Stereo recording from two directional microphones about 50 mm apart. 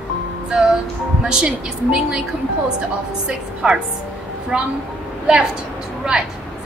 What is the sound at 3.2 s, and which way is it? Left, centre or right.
A woman's voice, centre.